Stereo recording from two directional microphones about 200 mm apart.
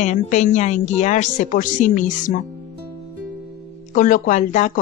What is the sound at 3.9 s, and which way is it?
Speech, 40° left (ahead or behind).